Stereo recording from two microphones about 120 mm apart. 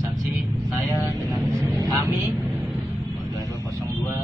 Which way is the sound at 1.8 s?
30° right (ahead or behind).